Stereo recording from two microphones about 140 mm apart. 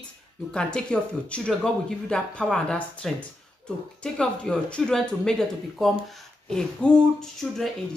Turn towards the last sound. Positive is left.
turn(degrees=5)  # may be behind; listen again after turning